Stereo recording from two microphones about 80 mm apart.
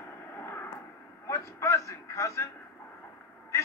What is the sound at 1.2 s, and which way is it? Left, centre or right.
A man's voice, left.